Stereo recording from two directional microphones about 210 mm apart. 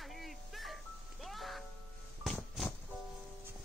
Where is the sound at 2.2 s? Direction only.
Centre (ahead or behind).